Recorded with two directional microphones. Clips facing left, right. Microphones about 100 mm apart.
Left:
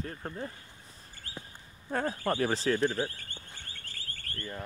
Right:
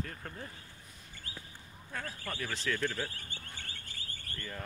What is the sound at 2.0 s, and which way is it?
Speech, 30° left (ahead or behind).